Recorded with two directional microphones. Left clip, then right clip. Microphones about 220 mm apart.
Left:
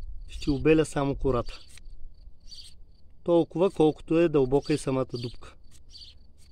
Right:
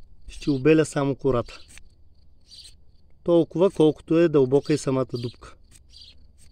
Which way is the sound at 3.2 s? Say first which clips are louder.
Right 4 dB; 15° right (ahead or behind).